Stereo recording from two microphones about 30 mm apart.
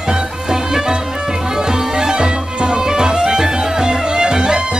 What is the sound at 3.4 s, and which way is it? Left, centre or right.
Music, centre.